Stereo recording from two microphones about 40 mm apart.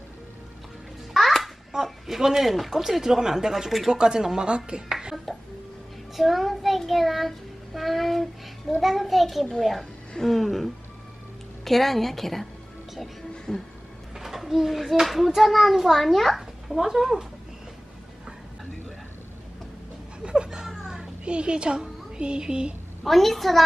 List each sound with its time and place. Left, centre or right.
1.1 s babbling: centre
1.7 s speech: centre
6.1 s a child's voice: centre
6.9 s child singing: centre
8.8 s a child's voice: centre
13.5 s a sound: centre
14.1 s a sound: centre
15.0 s a child's voice: centre
20.8 s children playing: right
22.1 s speech: right
23.0 s a child's voice: centre